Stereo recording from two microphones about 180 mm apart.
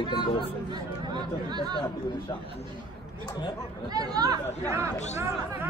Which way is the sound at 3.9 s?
20° right (ahead or behind).